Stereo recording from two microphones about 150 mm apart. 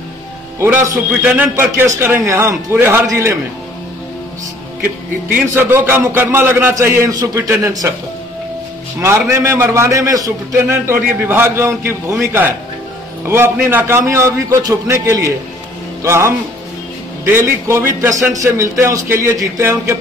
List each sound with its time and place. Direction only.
1.2 s a man's voice: 10° right (ahead or behind)
5.3 s a man's voice: 15° right (ahead or behind)
9.0 s a man's voice: 20° right (ahead or behind)
13.3 s a man's voice: 15° right (ahead or behind)